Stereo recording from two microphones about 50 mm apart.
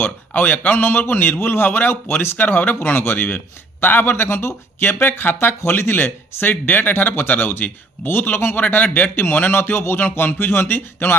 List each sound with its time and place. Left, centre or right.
0.0 s a man's voice: left
0.8 s a man's voice: left
5.0 s speech: left
8.5 s a man's voice: left
9.6 s speech: left